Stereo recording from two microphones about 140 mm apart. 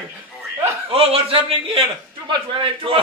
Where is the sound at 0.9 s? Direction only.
45° right (ahead or behind).